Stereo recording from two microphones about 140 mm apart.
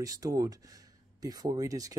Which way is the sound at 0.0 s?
25° right (ahead or behind).